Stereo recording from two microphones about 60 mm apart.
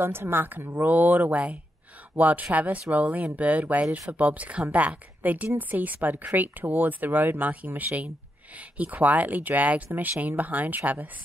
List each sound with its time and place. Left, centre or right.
0.0 s speech: right